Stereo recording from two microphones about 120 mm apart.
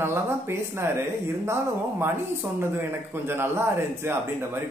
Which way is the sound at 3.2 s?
20° right (ahead or behind).